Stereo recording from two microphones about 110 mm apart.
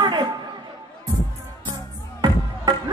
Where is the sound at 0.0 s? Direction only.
40° right (ahead or behind).